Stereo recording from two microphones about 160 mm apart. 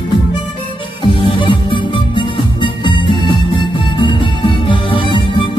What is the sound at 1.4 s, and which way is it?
Music, 30° left (ahead or behind).